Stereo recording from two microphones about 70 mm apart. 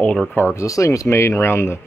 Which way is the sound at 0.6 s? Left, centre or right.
Left.